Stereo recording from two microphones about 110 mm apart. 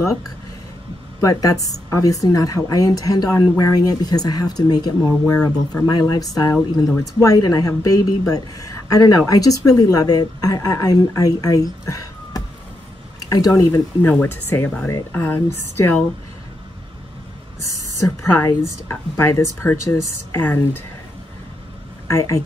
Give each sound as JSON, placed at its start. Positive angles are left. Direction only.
{"t": 1.2, "sound": "a woman's voice", "side_deg": 30}
{"t": 5.2, "sound": "speech", "side_deg": 10}
{"t": 6.1, "sound": "a woman's voice", "side_deg": 35}
{"t": 18.0, "sound": "speech", "side_deg": 30}
{"t": 22.0, "sound": "speech", "side_deg": 25}